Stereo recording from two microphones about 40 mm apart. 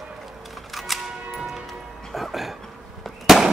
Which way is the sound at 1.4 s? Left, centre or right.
Centre.